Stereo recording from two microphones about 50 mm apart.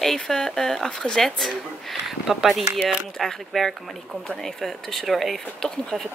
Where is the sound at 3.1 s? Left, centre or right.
Centre.